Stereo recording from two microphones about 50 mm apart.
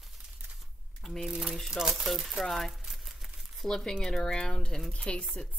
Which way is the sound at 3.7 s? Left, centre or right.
Centre.